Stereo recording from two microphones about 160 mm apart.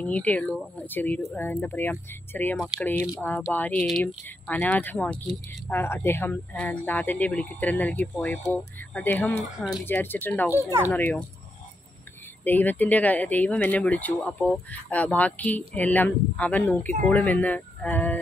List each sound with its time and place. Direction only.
0.0 s speech: 10° left (ahead or behind)
10.5 s speech: 15° right (ahead or behind)
10.9 s speech: 15° left (ahead or behind)
12.4 s speech: 10° left (ahead or behind)